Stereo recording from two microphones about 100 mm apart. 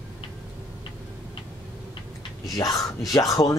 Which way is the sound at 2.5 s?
35° left (ahead or behind).